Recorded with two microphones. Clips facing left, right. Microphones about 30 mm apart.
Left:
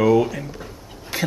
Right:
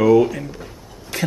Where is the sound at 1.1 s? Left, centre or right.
Centre.